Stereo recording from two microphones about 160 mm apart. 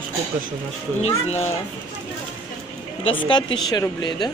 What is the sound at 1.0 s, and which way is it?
Speech, 40° left (ahead or behind).